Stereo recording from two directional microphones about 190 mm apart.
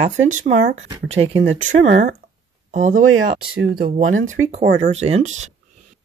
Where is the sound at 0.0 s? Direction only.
40° right (ahead or behind).